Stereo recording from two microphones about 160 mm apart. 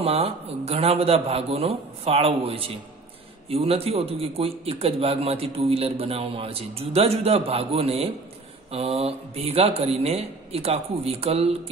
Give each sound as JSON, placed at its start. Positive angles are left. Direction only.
{"t": 0.0, "sound": "a man's voice", "side_deg": -40}